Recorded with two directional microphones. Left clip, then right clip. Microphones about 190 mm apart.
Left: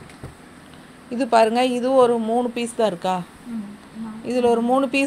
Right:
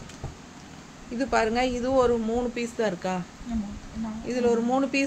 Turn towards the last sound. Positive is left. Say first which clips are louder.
# left 5 dB
turn(degrees=25)  # may be behind; listen again after turning